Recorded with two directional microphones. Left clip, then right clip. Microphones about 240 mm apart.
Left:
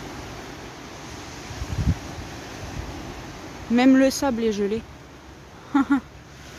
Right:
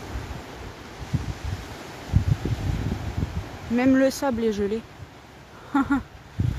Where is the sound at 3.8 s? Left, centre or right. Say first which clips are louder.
Left 2 dB; centre.